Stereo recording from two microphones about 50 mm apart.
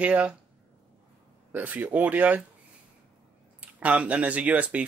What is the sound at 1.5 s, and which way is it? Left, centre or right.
Speech, right.